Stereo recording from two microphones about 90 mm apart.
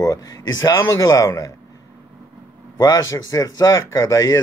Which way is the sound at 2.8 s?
40° left (ahead or behind).